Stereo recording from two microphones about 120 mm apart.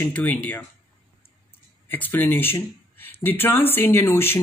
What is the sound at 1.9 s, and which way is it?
Speech, 15° left (ahead or behind).